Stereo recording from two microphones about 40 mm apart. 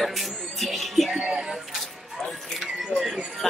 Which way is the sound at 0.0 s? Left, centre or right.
Centre.